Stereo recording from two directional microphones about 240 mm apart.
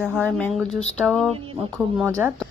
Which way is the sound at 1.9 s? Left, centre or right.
Centre.